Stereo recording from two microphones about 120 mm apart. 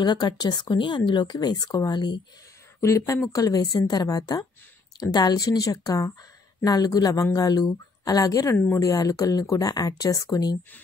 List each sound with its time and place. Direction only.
0.0 s speech: 35° left (ahead or behind)
2.8 s speech: 25° left (ahead or behind)